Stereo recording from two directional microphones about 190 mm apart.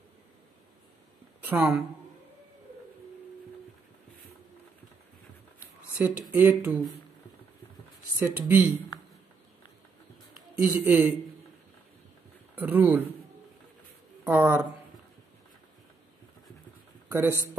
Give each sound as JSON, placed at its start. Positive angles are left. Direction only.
{"t": 1.4, "sound": "speech", "side_deg": -10}
{"t": 5.9, "sound": "speech", "side_deg": -10}
{"t": 8.2, "sound": "speech", "side_deg": -10}
{"t": 10.6, "sound": "speech", "side_deg": -10}
{"t": 12.5, "sound": "speech", "side_deg": -10}
{"t": 14.2, "sound": "speech", "side_deg": -10}
{"t": 17.1, "sound": "speech", "side_deg": -10}